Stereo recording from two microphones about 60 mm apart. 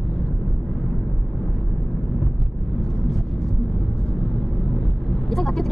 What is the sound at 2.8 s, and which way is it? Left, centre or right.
Vehicle, centre.